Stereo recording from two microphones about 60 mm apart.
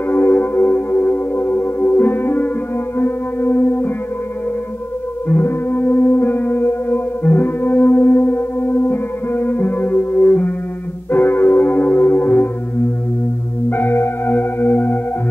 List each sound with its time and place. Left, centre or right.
0.1 s music: left
5.3 s music: left
13.7 s singing bowl: left